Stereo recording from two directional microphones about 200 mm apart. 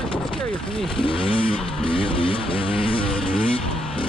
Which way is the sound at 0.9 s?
25° left (ahead or behind).